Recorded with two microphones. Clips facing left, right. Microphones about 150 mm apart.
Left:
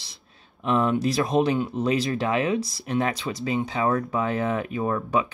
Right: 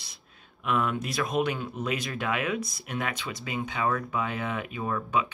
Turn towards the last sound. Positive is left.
turn(degrees=40)  # may be behind; listen again after turning